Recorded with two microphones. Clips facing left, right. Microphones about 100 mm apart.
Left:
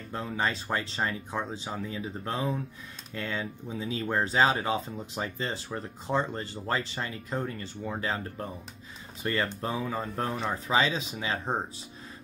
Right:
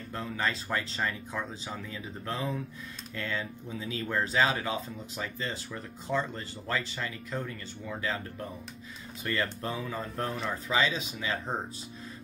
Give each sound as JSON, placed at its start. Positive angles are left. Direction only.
{"t": 0.1, "sound": "speech", "side_deg": 20}